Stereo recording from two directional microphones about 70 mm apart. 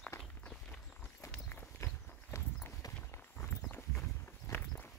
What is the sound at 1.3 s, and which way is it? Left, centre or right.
Walk, left.